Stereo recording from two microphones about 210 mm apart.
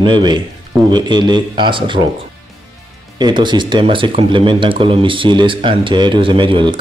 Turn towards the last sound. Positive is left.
turn(degrees=-20)  # may be behind; listen again after turning